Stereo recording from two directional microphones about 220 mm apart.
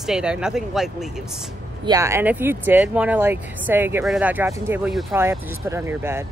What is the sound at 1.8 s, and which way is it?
Speech, 15° right (ahead or behind).